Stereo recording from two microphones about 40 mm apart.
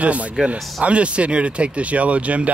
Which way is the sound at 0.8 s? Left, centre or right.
Right.